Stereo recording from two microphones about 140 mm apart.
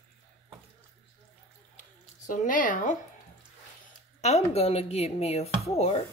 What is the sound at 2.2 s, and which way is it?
Speech, 70° left (ahead or behind).